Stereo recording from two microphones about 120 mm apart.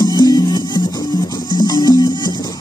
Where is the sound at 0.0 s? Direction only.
30° left (ahead or behind).